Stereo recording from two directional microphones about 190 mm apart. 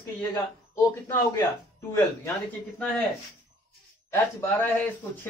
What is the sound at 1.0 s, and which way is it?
Speech, 15° left (ahead or behind).